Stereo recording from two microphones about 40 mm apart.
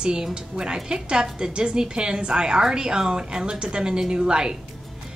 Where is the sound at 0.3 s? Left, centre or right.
Right.